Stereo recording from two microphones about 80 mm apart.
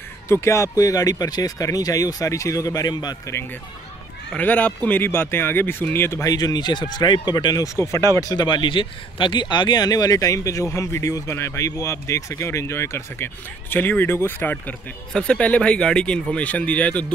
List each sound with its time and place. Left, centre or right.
0.3 s speech: left
4.4 s speech: left
6.2 s speech: left
8.5 s speech: left
15.1 s speech: centre